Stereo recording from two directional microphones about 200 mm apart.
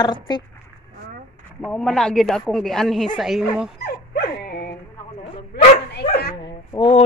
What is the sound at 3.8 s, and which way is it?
Dog, 50° left (ahead or behind).